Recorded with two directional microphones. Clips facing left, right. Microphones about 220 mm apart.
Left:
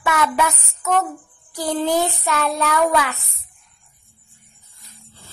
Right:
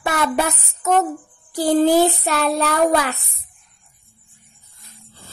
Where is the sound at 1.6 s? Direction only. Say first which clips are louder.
Right 6 dB; 35° right (ahead or behind).